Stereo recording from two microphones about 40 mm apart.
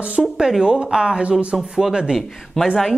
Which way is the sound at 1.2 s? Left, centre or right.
Right.